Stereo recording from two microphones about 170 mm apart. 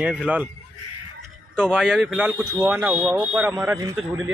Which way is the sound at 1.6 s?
5° right (ahead or behind).